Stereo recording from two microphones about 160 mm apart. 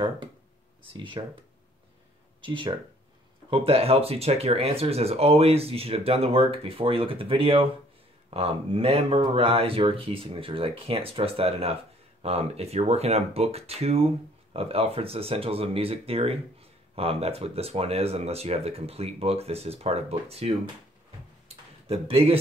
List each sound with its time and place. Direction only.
1.2 s speech: 30° right (ahead or behind)
2.4 s speech: 30° right (ahead or behind)
21.5 s a sound: 40° right (ahead or behind)